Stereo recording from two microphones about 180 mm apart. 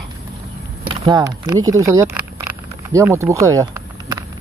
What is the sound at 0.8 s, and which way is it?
Speech, 25° right (ahead or behind).